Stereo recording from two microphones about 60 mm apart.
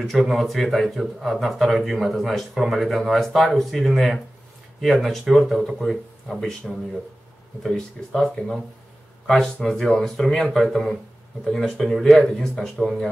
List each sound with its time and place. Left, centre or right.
0.0 s speech: centre
8.1 s speech: centre